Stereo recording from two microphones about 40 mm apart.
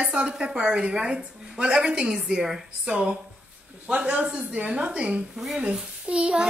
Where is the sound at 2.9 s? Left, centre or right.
Right.